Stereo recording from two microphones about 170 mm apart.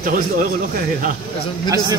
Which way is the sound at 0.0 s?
50° right (ahead or behind).